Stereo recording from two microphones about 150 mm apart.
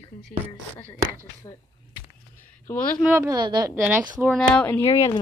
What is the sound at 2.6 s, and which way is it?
Speech, 10° left (ahead or behind).